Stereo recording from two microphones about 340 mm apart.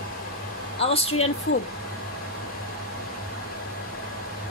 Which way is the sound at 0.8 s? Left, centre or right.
Centre.